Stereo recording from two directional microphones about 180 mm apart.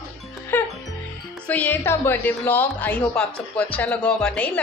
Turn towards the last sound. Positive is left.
turn(degrees=5)  # may be behind; listen again after turning